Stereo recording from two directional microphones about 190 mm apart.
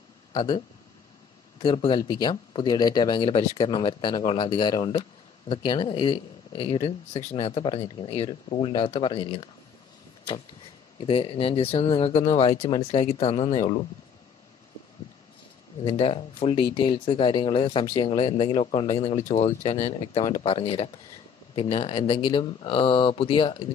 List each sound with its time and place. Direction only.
0.3 s speech: 25° left (ahead or behind)
11.0 s speech: 30° left (ahead or behind)
15.8 s speech: 30° left (ahead or behind)
19.9 s speech: 25° left (ahead or behind)